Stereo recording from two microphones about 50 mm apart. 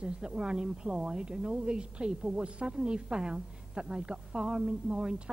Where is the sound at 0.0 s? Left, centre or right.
Centre.